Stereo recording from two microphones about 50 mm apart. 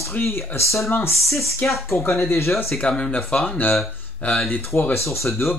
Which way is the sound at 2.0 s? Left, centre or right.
Left.